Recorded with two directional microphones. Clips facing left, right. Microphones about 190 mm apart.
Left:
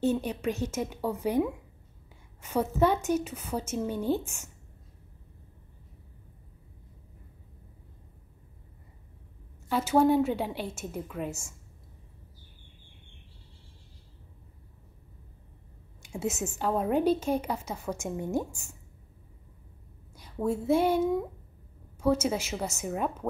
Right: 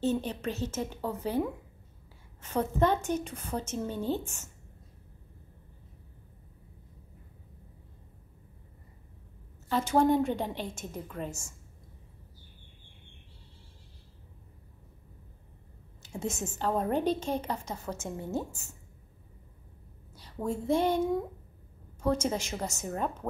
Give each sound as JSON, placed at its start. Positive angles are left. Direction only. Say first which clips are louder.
{"t": 0.0, "sound": "a woman's voice", "louder": "left 2 dB", "side_deg": 10}
{"t": 9.7, "sound": "a woman's voice", "louder": "left 2 dB", "side_deg": 5}
{"t": 16.0, "sound": "a woman's voice", "louder": "left 3 dB", "side_deg": 10}
{"t": 20.2, "sound": "a woman's voice", "louder": "left 4 dB", "side_deg": 5}